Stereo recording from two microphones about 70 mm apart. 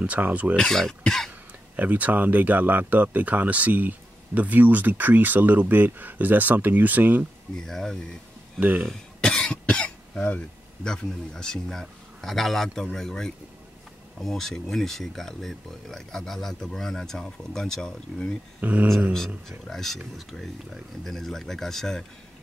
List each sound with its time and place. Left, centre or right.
0.0 s speech: centre
0.6 s speech: centre
1.8 s speech: right
7.5 s speech: centre
8.5 s speech: right
9.2 s cough: centre
10.9 s speech: centre
18.6 s speech: right
19.7 s speech: centre